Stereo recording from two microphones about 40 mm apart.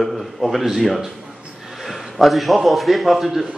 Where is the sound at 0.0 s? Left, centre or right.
Centre.